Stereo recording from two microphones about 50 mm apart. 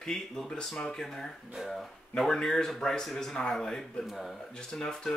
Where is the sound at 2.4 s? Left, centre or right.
Centre.